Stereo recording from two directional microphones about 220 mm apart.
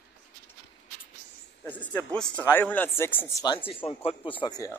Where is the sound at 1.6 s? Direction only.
10° left (ahead or behind).